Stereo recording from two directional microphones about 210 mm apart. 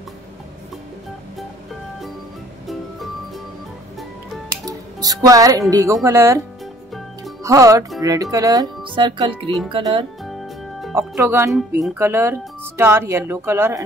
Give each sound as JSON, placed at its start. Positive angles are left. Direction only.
{"t": 4.6, "sound": "speech", "side_deg": -15}
{"t": 7.4, "sound": "speech", "side_deg": -15}
{"t": 11.0, "sound": "speech", "side_deg": -10}